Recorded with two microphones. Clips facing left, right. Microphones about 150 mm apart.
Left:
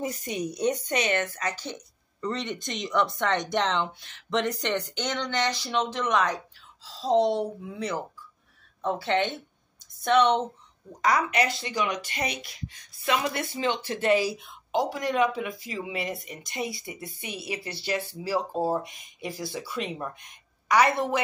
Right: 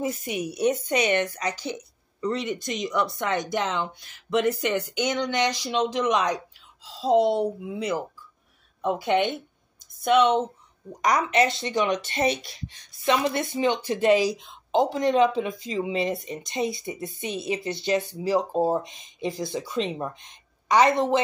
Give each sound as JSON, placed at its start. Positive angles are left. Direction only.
{"t": 0.2, "sound": "a woman's voice", "side_deg": -5}
{"t": 10.9, "sound": "speech", "side_deg": -20}